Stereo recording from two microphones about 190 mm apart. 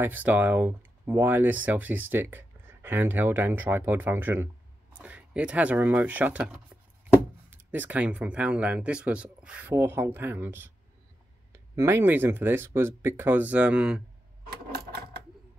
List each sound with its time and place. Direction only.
0.0 s speech: 10° right (ahead or behind)
7.7 s speech: 10° right (ahead or behind)
14.4 s a sound: 55° right (ahead or behind)